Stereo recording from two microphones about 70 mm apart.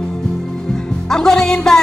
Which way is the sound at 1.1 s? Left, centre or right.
Centre.